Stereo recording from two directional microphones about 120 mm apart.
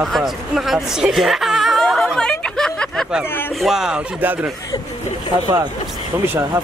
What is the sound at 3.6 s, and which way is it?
Speech, 5° right (ahead or behind).